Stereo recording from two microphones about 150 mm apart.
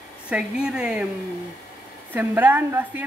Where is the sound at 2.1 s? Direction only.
10° right (ahead or behind).